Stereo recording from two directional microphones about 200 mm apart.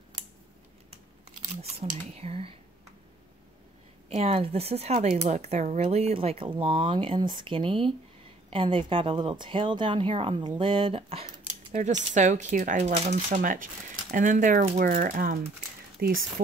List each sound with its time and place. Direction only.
1.5 s speech: 30° right (ahead or behind)
4.1 s speech: 30° right (ahead or behind); by 16.1 s 50° right (ahead or behind)